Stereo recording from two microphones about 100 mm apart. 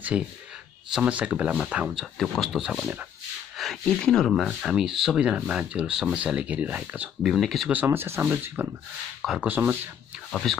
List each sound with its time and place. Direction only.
0.1 s speech: 10° right (ahead or behind)
2.1 s speech: 5° left (ahead or behind)
3.5 s a sound: centre (ahead or behind)
3.8 s speech: 5° left (ahead or behind)
4.6 s speech: 5° right (ahead or behind)
7.2 s speech: centre (ahead or behind)
7.8 s speech: 25° right (ahead or behind)
9.2 s speech: 5° right (ahead or behind)
9.5 s speech: 15° right (ahead or behind)
10.3 s speech: 5° left (ahead or behind)